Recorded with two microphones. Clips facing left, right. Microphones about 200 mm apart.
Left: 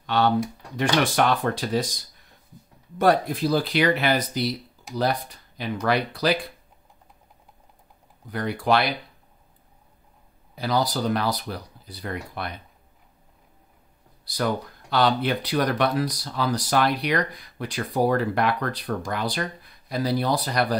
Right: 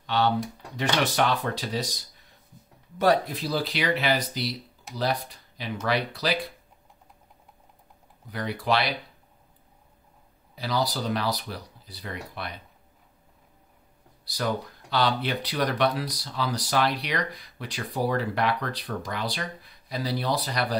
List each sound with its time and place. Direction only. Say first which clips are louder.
0.0 s speech: left 3 dB; 50° left (ahead or behind)
3.0 s speech: left 3 dB; 50° left (ahead or behind)
8.3 s speech: left 4 dB; 50° left (ahead or behind)
10.5 s speech: left 3 dB; 50° left (ahead or behind)
14.2 s speech: left 3 dB; 50° left (ahead or behind)